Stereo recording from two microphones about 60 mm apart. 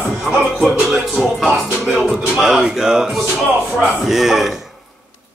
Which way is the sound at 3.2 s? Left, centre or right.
Centre.